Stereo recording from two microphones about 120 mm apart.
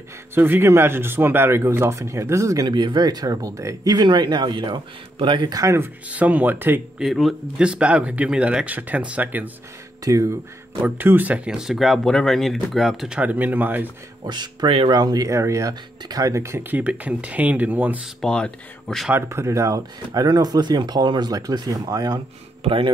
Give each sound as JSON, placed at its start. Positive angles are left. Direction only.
{"t": 0.3, "sound": "a man's voice", "side_deg": -20}
{"t": 5.8, "sound": "speech", "side_deg": -10}
{"t": 7.0, "sound": "speech", "side_deg": 0}
{"t": 10.0, "sound": "a man's voice", "side_deg": -25}
{"t": 10.8, "sound": "speech", "side_deg": -15}
{"t": 13.2, "sound": "speech", "side_deg": -15}
{"t": 14.2, "sound": "a man's voice", "side_deg": -35}
{"t": 18.2, "sound": "speech", "side_deg": 5}
{"t": 19.1, "sound": "a man's voice", "side_deg": -20}
{"t": 22.6, "sound": "a man's voice", "side_deg": -50}